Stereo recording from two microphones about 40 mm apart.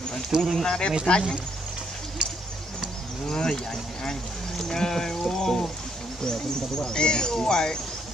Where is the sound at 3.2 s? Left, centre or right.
Centre.